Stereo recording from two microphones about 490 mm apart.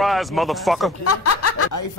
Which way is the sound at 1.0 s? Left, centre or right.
Left.